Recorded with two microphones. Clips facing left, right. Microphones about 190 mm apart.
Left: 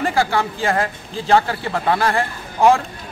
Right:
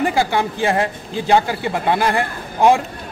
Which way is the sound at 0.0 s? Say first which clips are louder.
Right 1 dB; 15° right (ahead or behind).